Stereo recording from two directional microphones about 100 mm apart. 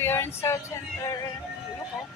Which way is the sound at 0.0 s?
25° left (ahead or behind).